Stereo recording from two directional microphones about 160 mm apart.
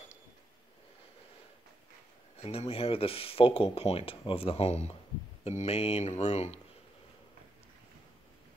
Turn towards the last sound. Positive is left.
turn(degrees=45)  # may be behind; listen again after turning